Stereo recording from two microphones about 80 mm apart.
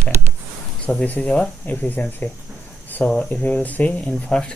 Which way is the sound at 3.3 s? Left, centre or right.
Centre.